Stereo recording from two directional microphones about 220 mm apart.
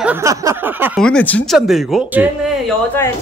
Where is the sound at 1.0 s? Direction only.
5° left (ahead or behind).